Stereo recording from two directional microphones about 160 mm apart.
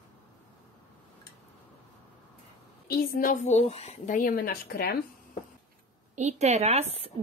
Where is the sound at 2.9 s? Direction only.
75° left (ahead or behind).